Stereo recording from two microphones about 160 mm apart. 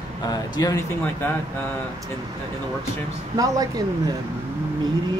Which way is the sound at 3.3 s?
25° right (ahead or behind).